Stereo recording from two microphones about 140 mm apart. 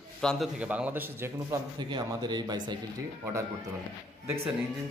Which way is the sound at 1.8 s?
30° right (ahead or behind).